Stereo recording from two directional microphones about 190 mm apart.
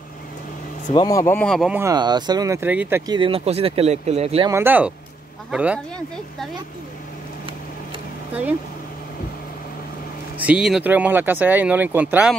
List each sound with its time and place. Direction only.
0.9 s speech: 20° left (ahead or behind); by 1.8 s centre (ahead or behind)
1.8 s speech: 20° right (ahead or behind)
3.1 s speech: 30° right (ahead or behind)
4.5 s speech: 10° right (ahead or behind)
8.3 s speech: 10° right (ahead or behind)
10.4 s speech: 5° right (ahead or behind)